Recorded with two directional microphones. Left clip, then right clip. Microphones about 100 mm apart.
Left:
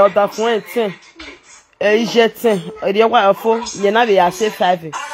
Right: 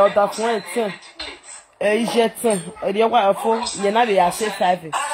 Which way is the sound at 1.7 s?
50° left (ahead or behind).